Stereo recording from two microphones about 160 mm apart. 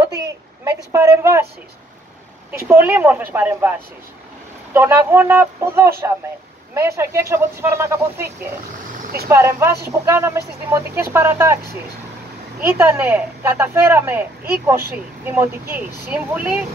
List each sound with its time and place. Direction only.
0.9 s speech: 15° right (ahead or behind)
2.7 s speech: 15° right (ahead or behind)
4.7 s speech: 15° right (ahead or behind)